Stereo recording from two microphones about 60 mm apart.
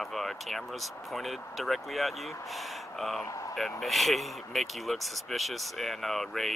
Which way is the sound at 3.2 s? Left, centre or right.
Left.